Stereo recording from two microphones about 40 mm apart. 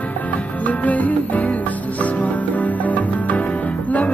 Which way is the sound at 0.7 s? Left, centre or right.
Left.